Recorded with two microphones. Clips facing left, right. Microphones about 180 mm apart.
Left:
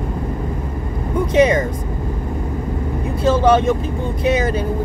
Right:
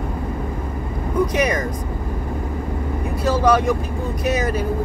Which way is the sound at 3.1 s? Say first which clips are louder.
Left 3 dB; 25° left (ahead or behind).